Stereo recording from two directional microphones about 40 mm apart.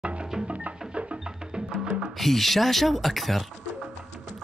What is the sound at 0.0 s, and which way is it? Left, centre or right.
Music, right.